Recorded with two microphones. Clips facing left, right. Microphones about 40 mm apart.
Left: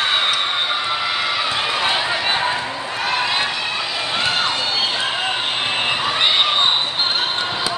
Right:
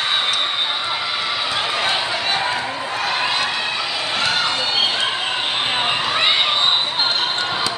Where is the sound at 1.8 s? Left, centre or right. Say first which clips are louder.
Left 1 dB; centre.